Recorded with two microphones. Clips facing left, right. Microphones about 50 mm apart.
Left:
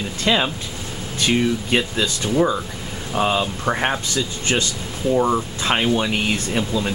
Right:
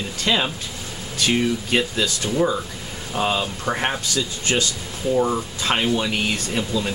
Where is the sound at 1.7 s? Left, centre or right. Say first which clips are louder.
Left 1 dB; centre.